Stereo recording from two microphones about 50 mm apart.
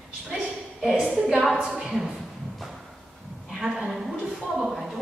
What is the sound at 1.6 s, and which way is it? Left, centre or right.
Speech, centre.